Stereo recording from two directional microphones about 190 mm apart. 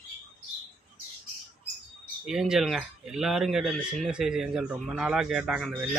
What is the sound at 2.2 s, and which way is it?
Speech, 5° right (ahead or behind).